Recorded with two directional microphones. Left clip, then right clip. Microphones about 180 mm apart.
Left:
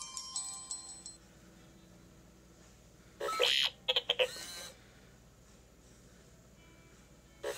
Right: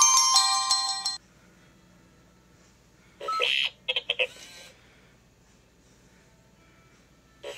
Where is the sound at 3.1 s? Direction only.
15° left (ahead or behind).